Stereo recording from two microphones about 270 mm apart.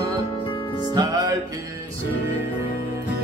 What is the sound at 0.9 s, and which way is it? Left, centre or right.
Music, centre.